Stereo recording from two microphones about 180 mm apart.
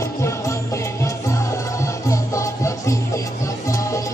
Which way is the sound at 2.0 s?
15° left (ahead or behind).